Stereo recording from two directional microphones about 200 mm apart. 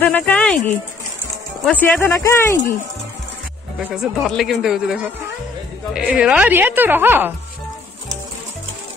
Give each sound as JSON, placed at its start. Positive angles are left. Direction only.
{"t": 0.0, "sound": "speech", "side_deg": 5}
{"t": 3.9, "sound": "a woman's voice", "side_deg": 0}